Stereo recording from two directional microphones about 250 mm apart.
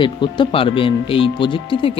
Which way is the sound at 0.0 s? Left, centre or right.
Centre.